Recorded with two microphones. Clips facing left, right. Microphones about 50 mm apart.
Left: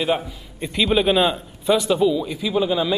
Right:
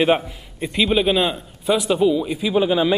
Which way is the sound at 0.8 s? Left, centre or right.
Centre.